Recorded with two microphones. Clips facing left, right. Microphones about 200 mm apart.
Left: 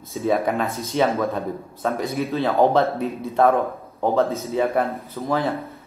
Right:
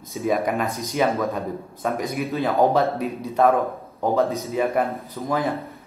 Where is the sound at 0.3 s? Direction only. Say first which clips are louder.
Left 1 dB; 15° right (ahead or behind).